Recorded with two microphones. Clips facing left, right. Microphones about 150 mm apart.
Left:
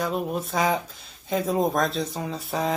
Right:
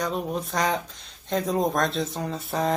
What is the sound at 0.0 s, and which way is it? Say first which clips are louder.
Speech: left 1 dB; 5° left (ahead or behind).